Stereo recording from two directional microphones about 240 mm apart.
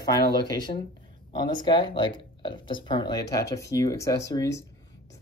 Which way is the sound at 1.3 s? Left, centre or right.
Centre.